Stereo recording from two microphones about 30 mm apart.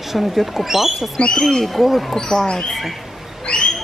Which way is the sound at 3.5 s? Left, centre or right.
Left.